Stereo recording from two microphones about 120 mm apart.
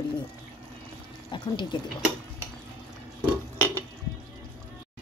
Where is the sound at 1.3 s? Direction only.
40° left (ahead or behind).